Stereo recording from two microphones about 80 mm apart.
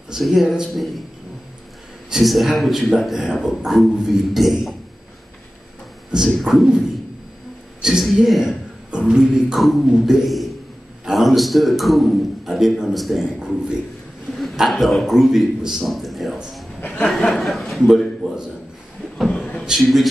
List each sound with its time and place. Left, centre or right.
0.1 s a man's voice: centre
2.0 s a man's voice: centre
6.1 s a man's voice: centre
7.8 s a man's voice: centre
16.8 s chuckle: centre
17.1 s a man's voice: centre
19.2 s a sound: centre
19.8 s a man's voice: centre